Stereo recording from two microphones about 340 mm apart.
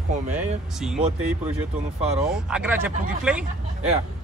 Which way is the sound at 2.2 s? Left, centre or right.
Centre.